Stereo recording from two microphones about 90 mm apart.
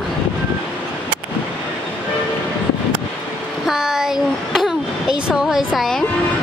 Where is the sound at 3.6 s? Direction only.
5° right (ahead or behind).